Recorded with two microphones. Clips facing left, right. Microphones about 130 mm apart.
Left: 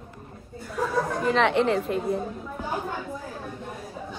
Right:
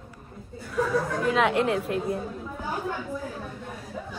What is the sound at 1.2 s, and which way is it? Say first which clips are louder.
A woman's voice: left 2 dB; 5° right (ahead or behind).